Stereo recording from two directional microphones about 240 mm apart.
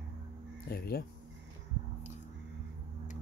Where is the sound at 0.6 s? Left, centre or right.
Left.